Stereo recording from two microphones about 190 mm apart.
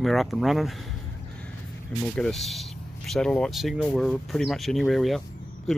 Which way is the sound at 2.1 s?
Centre (ahead or behind).